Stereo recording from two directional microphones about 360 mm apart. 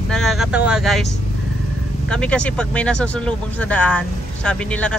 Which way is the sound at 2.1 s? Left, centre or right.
Centre.